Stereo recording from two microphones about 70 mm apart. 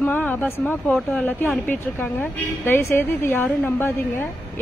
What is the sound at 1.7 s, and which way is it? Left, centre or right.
A woman's voice, left.